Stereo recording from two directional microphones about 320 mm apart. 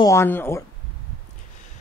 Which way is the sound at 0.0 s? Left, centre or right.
Centre.